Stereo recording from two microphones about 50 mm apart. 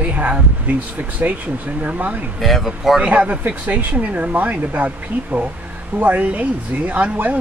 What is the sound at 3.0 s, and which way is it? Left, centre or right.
Speech, right.